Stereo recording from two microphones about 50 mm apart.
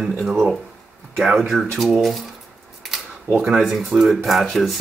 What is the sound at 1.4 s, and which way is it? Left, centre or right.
Speech, centre.